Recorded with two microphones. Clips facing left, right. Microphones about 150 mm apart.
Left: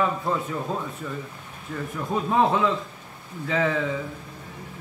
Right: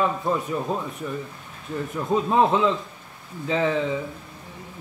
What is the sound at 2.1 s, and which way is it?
A man's voice, 20° right (ahead or behind).